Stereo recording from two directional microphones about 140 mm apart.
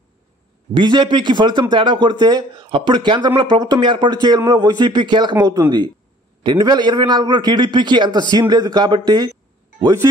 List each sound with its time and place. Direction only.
0.7 s speech: 35° right (ahead or behind)